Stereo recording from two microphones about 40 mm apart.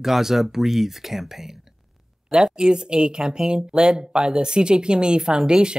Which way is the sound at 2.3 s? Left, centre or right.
Right.